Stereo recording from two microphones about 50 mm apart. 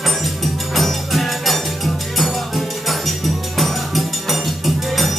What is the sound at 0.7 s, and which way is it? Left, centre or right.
Music, centre.